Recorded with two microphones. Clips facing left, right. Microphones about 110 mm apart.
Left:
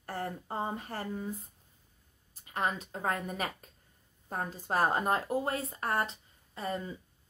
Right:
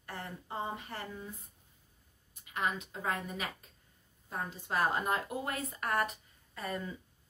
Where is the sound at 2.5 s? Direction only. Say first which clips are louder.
Left 2 dB; 40° left (ahead or behind).